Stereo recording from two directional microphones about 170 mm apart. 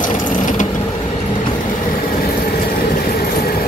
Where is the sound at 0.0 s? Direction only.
50° left (ahead or behind).